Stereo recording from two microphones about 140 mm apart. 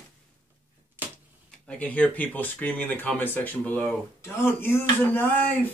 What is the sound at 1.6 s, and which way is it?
Speech, 10° left (ahead or behind).